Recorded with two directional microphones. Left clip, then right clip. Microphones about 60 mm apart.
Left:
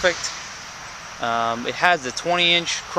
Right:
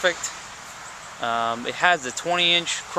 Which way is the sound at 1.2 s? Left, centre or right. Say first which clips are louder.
Left 2 dB; left.